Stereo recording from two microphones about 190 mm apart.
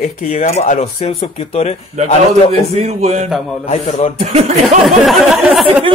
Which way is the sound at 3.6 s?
35° left (ahead or behind).